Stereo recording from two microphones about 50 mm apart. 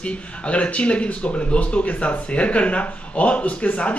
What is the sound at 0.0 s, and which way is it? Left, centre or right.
Speech, left.